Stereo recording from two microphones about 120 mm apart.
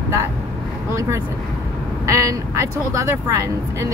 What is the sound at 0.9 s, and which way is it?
Speech, 25° right (ahead or behind).